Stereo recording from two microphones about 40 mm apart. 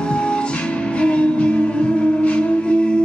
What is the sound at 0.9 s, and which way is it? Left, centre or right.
Music, left.